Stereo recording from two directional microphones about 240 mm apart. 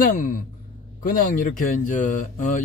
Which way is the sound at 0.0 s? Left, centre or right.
Left.